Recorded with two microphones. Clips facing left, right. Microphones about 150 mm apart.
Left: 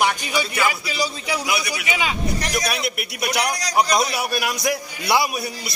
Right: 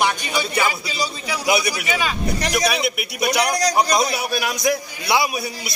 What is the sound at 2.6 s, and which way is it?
A man's voice, centre (ahead or behind).